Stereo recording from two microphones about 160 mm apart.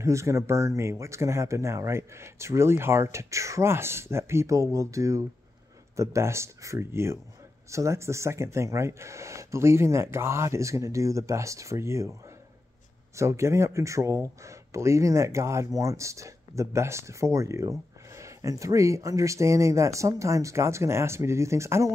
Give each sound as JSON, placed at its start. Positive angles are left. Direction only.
{"t": 0.0, "sound": "speech", "side_deg": -20}
{"t": 13.1, "sound": "speech", "side_deg": -20}